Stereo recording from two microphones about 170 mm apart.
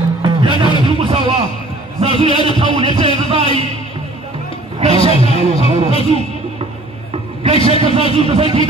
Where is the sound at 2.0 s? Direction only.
30° right (ahead or behind).